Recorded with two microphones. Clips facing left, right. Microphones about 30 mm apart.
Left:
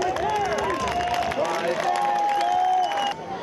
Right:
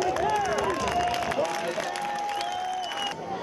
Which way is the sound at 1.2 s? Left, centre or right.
Centre.